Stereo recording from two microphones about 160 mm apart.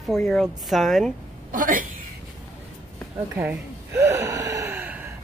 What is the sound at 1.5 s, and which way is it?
Speech, 55° right (ahead or behind).